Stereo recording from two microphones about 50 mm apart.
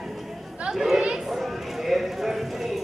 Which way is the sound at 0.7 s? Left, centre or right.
Centre.